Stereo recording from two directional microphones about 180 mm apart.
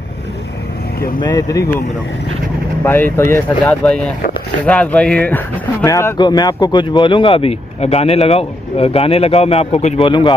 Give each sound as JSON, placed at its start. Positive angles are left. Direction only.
{"t": 1.2, "sound": "speech", "side_deg": 20}
{"t": 2.8, "sound": "speech", "side_deg": 10}